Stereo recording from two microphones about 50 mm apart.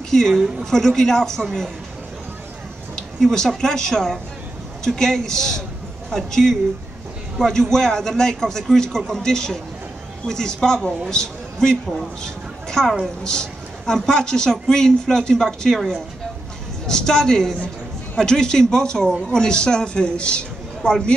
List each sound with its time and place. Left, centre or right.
0.1 s a woman's voice: centre
3.2 s a woman's voice: centre